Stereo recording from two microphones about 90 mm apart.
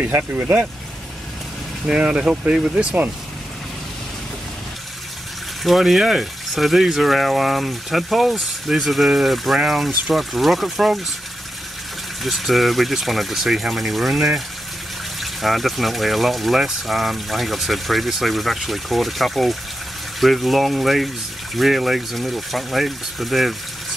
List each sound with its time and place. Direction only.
0.0 s speech: 20° right (ahead or behind)
1.9 s speech: 10° right (ahead or behind)
5.6 s speech: centre (ahead or behind)
12.2 s speech: centre (ahead or behind)